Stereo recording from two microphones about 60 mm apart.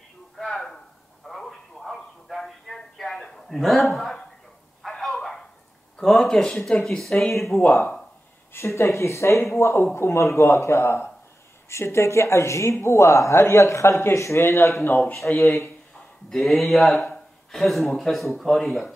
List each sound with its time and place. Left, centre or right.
0.4 s a sound: centre
5.9 s speech: centre
7.6 s speech: left
14.9 s speech: left
15.3 s speech: centre